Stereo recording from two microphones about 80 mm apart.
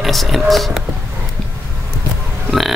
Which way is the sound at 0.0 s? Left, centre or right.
Centre.